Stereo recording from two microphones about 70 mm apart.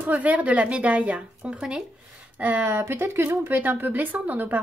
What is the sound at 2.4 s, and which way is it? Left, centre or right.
A woman's voice, right.